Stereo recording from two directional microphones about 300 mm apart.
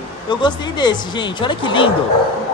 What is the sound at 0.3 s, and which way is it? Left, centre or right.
Speech, centre.